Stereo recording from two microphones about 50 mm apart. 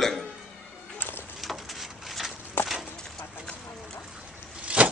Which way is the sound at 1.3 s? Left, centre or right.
Centre.